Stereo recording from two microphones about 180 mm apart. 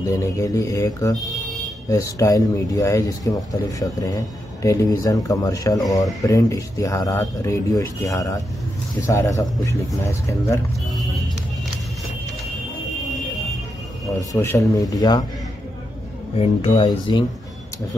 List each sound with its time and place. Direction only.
0.0 s speech: 20° left (ahead or behind)
14.3 s speech: 15° left (ahead or behind)
16.3 s speech: 30° left (ahead or behind)